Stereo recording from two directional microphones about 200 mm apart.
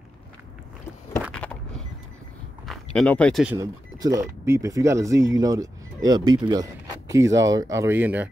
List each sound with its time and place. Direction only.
1.3 s a sound: 5° left (ahead or behind)
2.6 s speech: centre (ahead or behind)
3.5 s speech: 15° right (ahead or behind)